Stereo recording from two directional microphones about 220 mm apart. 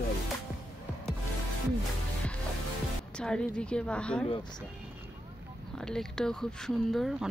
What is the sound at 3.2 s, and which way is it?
Speech, 5° left (ahead or behind).